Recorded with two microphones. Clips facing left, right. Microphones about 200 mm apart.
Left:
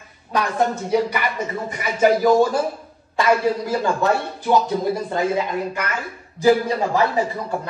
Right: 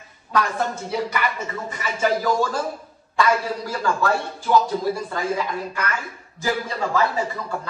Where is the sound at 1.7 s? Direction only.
15° left (ahead or behind).